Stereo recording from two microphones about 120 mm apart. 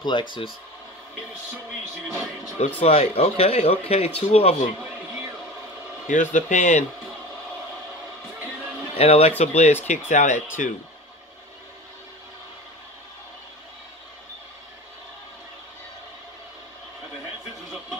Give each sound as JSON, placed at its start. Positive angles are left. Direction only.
{"t": 0.0, "sound": "speech", "side_deg": 40}
{"t": 2.8, "sound": "speech", "side_deg": 55}
{"t": 6.0, "sound": "speech", "side_deg": 90}
{"t": 8.9, "sound": "speech", "side_deg": 60}
{"t": 9.4, "sound": "speech", "side_deg": 70}
{"t": 9.8, "sound": "speech", "side_deg": 80}